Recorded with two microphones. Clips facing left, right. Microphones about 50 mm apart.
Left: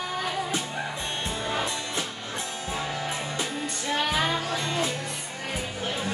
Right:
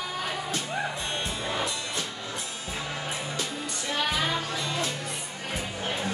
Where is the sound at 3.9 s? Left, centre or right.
Centre.